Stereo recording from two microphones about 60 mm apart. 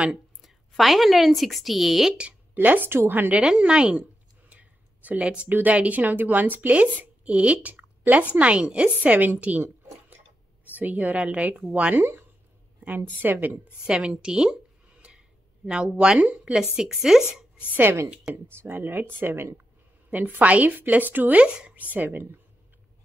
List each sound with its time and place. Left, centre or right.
0.4 s speech: centre
2.5 s speech: right
3.3 s a woman's voice: centre
4.5 s a sound: right
5.5 s speech: right
10.7 s speech: right
12.0 s speech: right
13.8 s a sound: centre
16.7 s a woman's voice: centre
17.6 s speech: right
20.1 s speech: right